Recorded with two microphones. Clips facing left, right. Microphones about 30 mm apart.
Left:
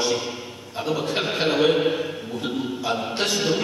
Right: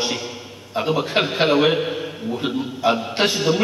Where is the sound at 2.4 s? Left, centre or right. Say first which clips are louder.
Right 5 dB; right.